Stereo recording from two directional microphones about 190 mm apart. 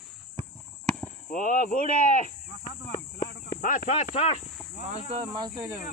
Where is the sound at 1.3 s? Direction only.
45° left (ahead or behind).